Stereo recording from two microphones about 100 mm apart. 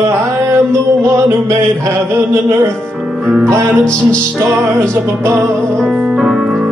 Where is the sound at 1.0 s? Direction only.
30° right (ahead or behind).